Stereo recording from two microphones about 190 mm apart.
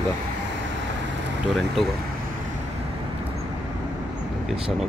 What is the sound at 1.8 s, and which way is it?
Speech, centre (ahead or behind).